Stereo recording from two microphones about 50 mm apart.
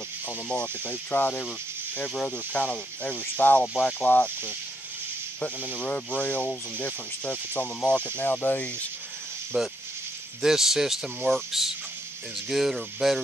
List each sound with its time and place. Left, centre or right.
0.8 s speech: left
2.0 s speech: left
5.8 s speech: left
7.8 s speech: left
8.2 s speech: left
9.5 s speech: centre